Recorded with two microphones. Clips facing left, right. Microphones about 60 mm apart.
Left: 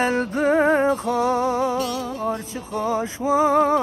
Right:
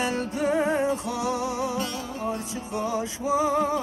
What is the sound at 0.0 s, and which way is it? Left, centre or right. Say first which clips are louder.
Music: left 6 dB; left.